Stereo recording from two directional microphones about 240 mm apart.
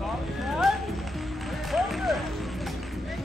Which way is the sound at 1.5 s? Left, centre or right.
Centre.